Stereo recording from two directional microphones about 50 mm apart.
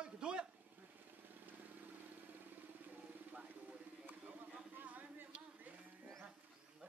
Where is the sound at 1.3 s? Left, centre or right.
Right.